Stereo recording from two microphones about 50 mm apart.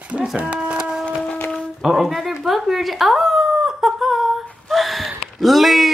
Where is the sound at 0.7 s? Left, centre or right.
Right.